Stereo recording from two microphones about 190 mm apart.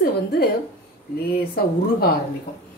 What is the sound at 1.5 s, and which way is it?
Speech, 50° left (ahead or behind).